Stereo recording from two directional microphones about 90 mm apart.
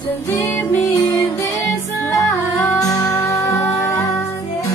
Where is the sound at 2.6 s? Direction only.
40° left (ahead or behind).